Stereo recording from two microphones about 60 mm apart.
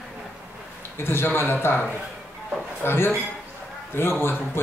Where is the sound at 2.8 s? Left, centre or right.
Left.